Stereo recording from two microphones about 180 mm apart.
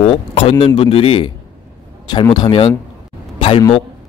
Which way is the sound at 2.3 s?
25° left (ahead or behind).